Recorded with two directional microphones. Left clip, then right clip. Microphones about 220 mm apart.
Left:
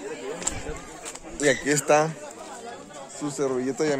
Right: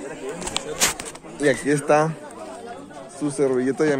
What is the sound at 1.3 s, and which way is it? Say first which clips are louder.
Speech: right 2 dB; 10° left (ahead or behind).